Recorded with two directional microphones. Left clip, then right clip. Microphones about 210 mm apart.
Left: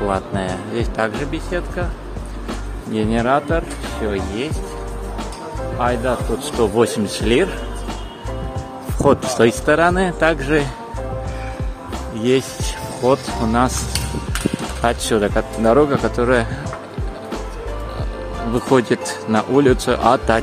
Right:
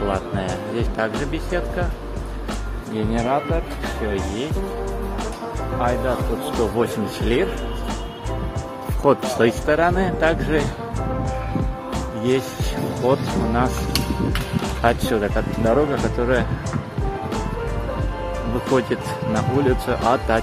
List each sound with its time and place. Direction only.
0.1 s speech: 20° left (ahead or behind)
3.0 s speech: 35° left (ahead or behind)
5.8 s speech: 40° left (ahead or behind)
9.0 s speech: 25° left (ahead or behind)
13.0 s speech: 25° left (ahead or behind)
14.8 s speech: 25° left (ahead or behind)
18.7 s speech: 35° left (ahead or behind)